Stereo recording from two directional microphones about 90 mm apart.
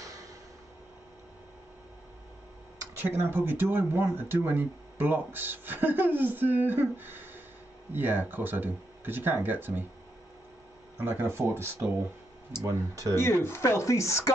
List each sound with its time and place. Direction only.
0.0 s a sound: 40° right (ahead or behind)
3.0 s speech: 25° right (ahead or behind)
11.0 s speech: 25° right (ahead or behind)
12.6 s speech: 40° right (ahead or behind)
13.1 s speech: 30° left (ahead or behind)